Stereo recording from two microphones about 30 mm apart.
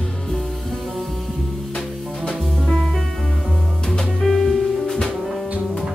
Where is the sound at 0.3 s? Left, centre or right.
Centre.